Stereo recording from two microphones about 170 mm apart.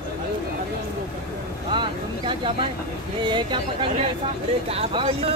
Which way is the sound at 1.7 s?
30° right (ahead or behind).